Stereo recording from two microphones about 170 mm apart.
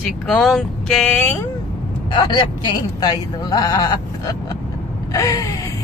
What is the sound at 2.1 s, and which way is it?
Speech, 25° left (ahead or behind).